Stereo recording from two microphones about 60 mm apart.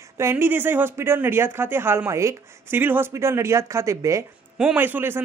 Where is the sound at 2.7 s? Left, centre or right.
Right.